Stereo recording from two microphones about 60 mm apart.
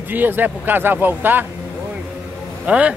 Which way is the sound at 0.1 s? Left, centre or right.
Right.